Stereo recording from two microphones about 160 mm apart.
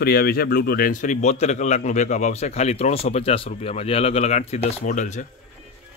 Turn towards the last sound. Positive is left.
turn(degrees=50)  # may be behind; listen again after turning